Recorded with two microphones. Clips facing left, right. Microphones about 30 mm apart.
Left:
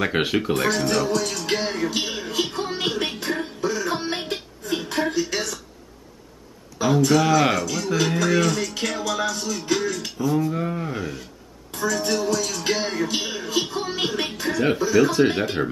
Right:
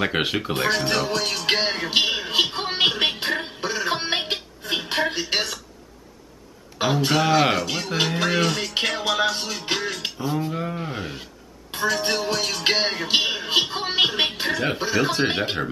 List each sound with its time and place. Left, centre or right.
0.0 s speech: centre
0.6 s speech: right
0.8 s music: right
6.8 s music: right
7.2 s speech: right
8.2 s music: right
9.8 s a sound: right
10.5 s speech: centre
10.9 s speech: right
11.7 s music: right
15.0 s speech: right